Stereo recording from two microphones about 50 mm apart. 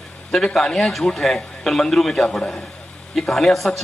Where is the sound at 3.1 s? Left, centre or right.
Centre.